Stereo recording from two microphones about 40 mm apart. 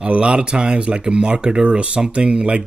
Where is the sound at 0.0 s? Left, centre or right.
Right.